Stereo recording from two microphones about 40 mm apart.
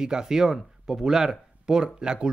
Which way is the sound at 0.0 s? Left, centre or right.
Centre.